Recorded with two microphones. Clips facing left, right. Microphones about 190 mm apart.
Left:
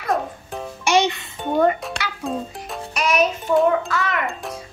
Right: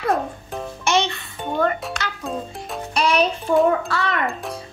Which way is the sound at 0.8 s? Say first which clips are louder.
Left 3 dB; 15° left (ahead or behind).